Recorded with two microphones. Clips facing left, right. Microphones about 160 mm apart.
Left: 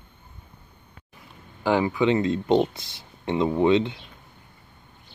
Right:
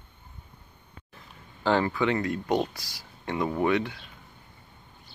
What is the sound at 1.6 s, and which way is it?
Speech, 15° left (ahead or behind).